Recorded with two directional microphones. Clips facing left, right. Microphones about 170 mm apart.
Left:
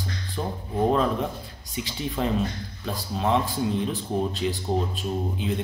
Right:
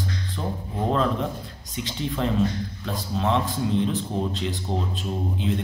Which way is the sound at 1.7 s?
10° left (ahead or behind).